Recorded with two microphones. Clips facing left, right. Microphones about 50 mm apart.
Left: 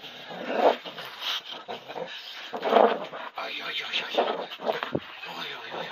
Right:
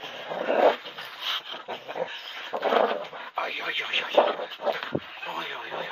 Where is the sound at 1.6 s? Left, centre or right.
Right.